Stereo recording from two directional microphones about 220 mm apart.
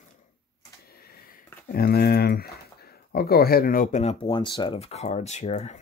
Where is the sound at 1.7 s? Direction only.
45° left (ahead or behind).